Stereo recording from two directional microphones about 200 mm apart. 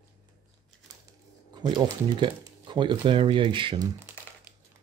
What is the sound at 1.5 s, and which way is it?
Speech, 25° right (ahead or behind).